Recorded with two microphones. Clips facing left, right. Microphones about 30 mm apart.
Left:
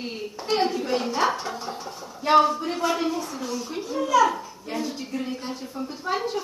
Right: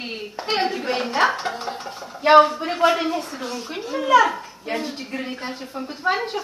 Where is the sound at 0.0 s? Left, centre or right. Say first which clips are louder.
Right 3 dB; right.